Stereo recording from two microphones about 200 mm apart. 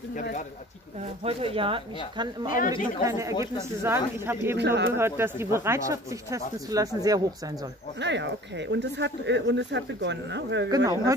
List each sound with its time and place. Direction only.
1.2 s speech: 30° right (ahead or behind); by 4.6 s 10° right (ahead or behind)
4.6 s speech: 60° right (ahead or behind)
4.9 s speech: 10° right (ahead or behind)
8.0 s speech: 60° right (ahead or behind)
10.7 s speech: 20° right (ahead or behind)